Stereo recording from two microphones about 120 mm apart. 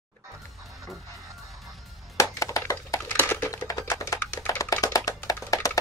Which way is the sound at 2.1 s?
25° left (ahead or behind).